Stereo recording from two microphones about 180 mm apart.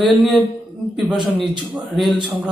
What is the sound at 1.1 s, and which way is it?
Speech, 25° right (ahead or behind).